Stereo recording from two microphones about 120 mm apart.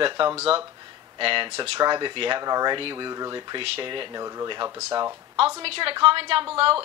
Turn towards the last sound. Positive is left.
turn(degrees=-55)  # may be behind; listen again after turning